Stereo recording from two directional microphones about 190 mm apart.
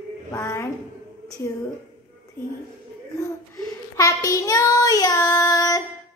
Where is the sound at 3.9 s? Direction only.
15° left (ahead or behind).